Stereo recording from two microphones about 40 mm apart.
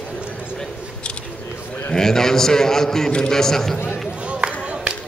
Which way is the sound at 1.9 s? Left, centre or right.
Centre.